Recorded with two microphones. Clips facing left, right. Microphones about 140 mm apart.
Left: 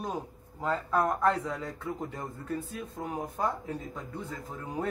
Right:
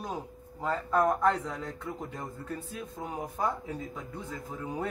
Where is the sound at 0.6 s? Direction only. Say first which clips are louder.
Right 1 dB; centre (ahead or behind).